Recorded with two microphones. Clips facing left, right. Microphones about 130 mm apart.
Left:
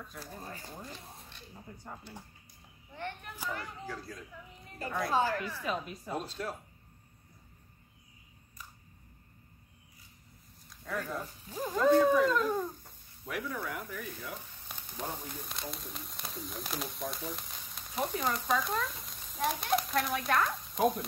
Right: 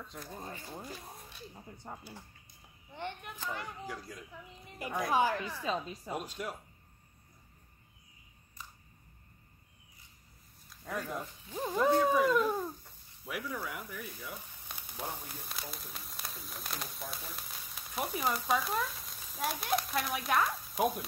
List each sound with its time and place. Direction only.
2.9 s a child's voice: 20° right (ahead or behind)
6.1 s speech: 15° right (ahead or behind)
10.9 s speech: 15° right (ahead or behind)
14.8 s a sound: 10° right (ahead or behind)
15.4 s speech: 5° right (ahead or behind)